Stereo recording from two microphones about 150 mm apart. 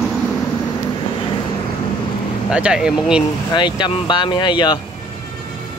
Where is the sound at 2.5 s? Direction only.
5° right (ahead or behind).